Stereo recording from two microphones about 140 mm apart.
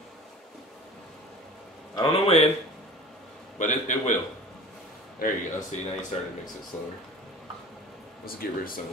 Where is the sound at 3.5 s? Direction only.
60° left (ahead or behind).